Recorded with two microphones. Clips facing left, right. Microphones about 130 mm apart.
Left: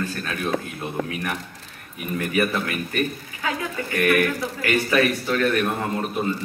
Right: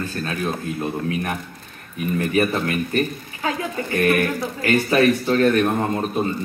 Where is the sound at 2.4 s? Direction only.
35° right (ahead or behind).